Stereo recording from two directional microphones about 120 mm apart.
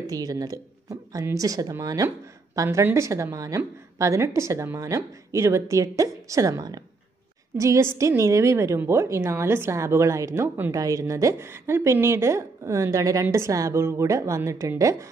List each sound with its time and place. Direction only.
0.1 s a woman's voice: 30° right (ahead or behind)